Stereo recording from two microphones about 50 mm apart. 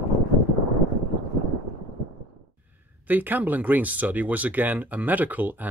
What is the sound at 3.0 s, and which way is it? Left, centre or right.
Speech, right.